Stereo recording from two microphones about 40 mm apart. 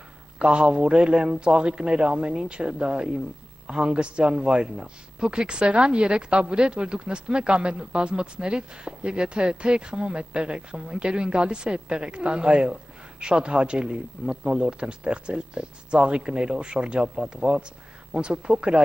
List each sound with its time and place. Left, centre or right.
0.4 s speech: right